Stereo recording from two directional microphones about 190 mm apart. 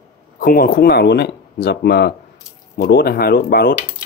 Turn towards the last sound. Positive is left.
turn(degrees=50)  # may be behind; listen again after turning